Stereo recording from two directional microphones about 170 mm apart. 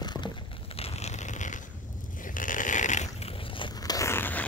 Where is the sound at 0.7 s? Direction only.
40° left (ahead or behind).